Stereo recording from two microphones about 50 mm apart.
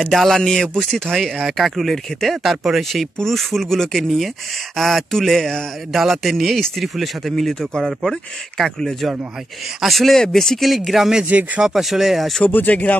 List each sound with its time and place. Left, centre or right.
0.0 s speech: centre
5.9 s speech: centre
9.8 s speech: centre
11.2 s speech: right
11.6 s speech: centre
12.4 s speech: left